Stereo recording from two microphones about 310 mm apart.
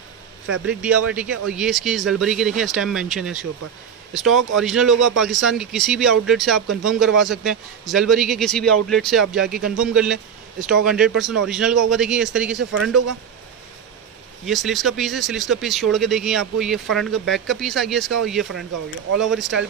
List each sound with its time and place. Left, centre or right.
0.7 s speech: centre
14.4 s speech: centre